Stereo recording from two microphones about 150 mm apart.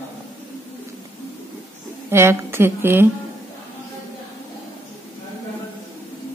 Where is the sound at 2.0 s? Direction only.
15° right (ahead or behind).